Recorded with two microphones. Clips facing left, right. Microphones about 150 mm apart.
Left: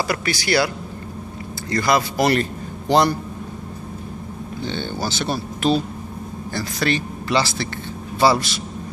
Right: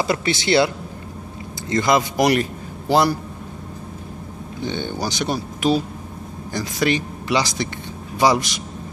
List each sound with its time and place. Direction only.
0.0 s speech: 25° right (ahead or behind)
1.7 s speech: 20° right (ahead or behind)
4.6 s speech: 15° right (ahead or behind)